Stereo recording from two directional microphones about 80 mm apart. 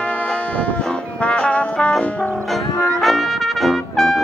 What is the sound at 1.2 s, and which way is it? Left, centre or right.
Music, centre.